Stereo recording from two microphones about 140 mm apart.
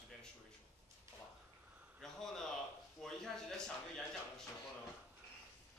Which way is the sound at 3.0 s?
5° left (ahead or behind).